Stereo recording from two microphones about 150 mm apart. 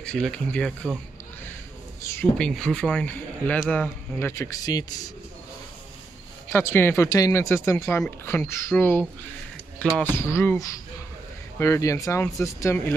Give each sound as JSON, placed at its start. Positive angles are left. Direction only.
{"t": 0.0, "sound": "speech", "side_deg": 5}
{"t": 2.0, "sound": "a sound", "side_deg": 20}
{"t": 2.3, "sound": "speech", "side_deg": 5}
{"t": 6.5, "sound": "speech", "side_deg": 15}
{"t": 10.1, "sound": "speech", "side_deg": 15}